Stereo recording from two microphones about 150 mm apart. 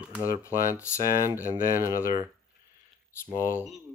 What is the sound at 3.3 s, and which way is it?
Speech, 20° left (ahead or behind).